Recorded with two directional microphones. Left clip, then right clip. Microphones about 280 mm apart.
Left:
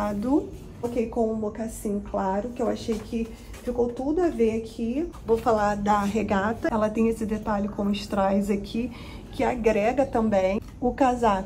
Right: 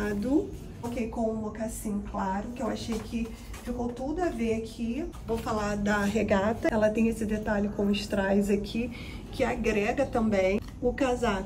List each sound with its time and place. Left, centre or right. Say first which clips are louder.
0.8 s a woman's voice: left 6 dB; centre